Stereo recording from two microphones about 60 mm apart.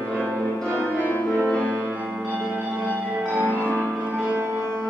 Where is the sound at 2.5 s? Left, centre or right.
Right.